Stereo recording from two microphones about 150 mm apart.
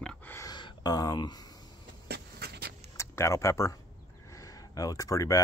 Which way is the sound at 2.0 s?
90° right.